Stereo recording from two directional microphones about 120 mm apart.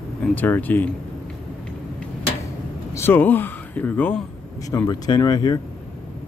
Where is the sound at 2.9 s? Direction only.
20° left (ahead or behind).